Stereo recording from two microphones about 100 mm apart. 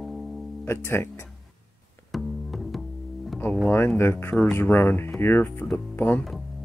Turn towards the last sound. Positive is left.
turn(degrees=20)  # may be behind; listen again after turning